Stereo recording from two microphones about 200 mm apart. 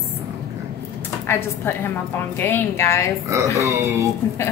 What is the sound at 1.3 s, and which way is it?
Speech, 10° left (ahead or behind).